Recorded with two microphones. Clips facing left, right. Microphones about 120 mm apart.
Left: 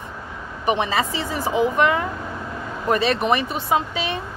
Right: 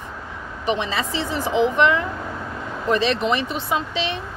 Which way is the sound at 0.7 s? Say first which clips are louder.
Left 2 dB; 50° left (ahead or behind).